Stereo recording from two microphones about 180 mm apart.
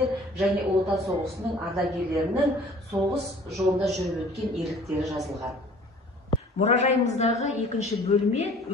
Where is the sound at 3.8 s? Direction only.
Centre (ahead or behind).